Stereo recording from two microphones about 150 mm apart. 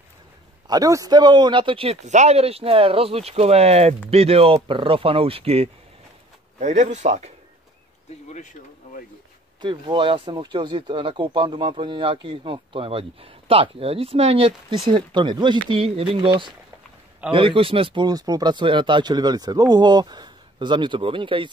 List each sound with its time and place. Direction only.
0.7 s speech: 25° right (ahead or behind); by 5.7 s 40° right (ahead or behind)
6.6 s speech: 50° right (ahead or behind)
9.6 s speech: 30° right (ahead or behind)
17.3 s speech: 35° right (ahead or behind)